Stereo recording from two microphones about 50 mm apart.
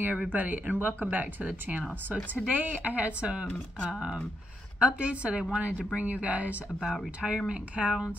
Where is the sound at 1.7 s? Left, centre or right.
Right.